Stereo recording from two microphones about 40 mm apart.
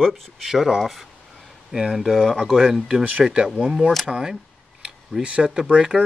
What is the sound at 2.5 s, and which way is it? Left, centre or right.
Speech, centre.